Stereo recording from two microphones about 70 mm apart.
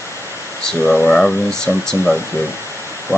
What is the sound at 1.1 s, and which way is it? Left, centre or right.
Speech, centre.